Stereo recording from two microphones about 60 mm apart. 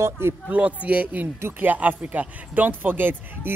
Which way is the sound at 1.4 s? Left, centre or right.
Right.